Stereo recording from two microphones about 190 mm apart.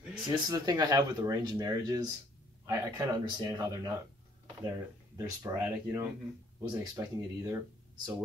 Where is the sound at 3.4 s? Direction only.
20° right (ahead or behind).